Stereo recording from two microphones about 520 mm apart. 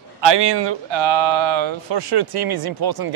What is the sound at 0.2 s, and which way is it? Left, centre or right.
Speech, right.